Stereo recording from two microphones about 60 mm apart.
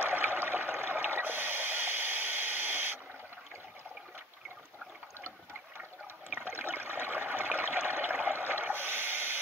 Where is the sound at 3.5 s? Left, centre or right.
Right.